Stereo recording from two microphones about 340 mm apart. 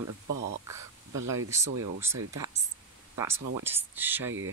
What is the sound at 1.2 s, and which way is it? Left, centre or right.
Speech, right.